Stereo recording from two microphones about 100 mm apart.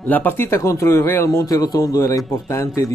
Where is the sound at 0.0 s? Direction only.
20° left (ahead or behind).